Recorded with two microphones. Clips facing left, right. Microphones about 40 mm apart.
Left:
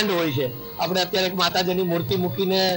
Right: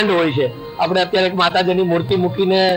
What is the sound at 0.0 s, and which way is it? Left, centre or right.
A man's voice, right.